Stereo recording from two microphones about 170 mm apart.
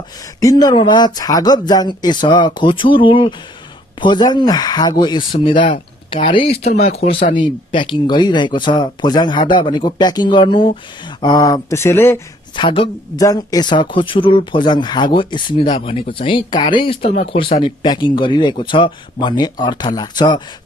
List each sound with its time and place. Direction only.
0.4 s speech: 20° left (ahead or behind)
12.5 s speech: 30° left (ahead or behind)
13.2 s speech: 20° left (ahead or behind)